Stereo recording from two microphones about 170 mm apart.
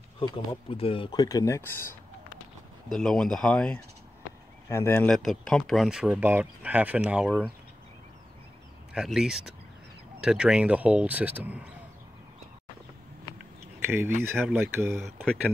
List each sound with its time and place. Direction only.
0.2 s speech: 30° left (ahead or behind)
2.9 s speech: 5° left (ahead or behind)
5.1 s speech: centre (ahead or behind)
8.9 s speech: 5° right (ahead or behind)
13.8 s speech: 15° right (ahead or behind)